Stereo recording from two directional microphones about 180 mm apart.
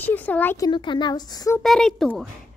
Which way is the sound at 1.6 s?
Centre (ahead or behind).